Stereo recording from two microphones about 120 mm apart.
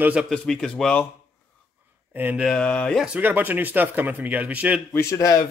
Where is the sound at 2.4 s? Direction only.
10° left (ahead or behind).